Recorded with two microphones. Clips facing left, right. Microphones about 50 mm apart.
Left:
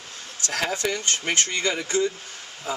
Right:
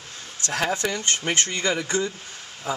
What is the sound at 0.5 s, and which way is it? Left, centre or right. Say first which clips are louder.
Speech: right 2 dB; right.